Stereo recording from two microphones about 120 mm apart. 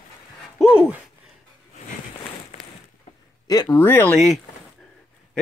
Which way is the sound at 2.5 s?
75° left (ahead or behind).